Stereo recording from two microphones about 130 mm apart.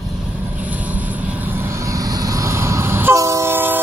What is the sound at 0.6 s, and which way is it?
Vehicle, 10° right (ahead or behind).